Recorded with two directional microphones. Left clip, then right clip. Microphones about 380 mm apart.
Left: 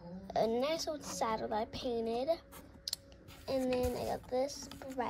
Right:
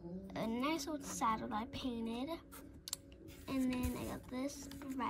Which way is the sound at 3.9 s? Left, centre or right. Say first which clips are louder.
Left 9 dB; centre.